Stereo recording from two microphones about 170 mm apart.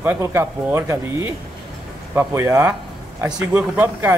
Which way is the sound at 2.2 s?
15° right (ahead or behind).